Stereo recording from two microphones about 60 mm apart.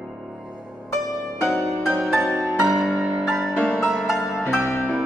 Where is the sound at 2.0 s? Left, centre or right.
Centre.